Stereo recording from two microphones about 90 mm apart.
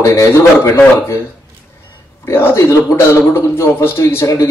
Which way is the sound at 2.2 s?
25° left (ahead or behind).